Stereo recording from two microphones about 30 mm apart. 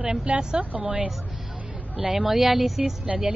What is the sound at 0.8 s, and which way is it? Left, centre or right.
Speech, right.